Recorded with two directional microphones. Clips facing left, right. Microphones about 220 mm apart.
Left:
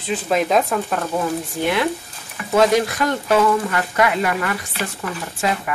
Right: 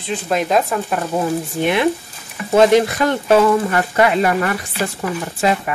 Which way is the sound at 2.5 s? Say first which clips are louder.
Right 4 dB; 25° right (ahead or behind).